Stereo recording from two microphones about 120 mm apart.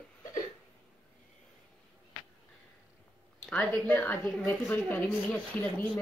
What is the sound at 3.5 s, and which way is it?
Speech, 10° left (ahead or behind).